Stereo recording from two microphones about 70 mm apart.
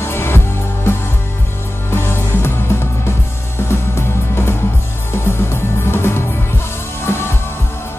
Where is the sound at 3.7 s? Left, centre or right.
Left.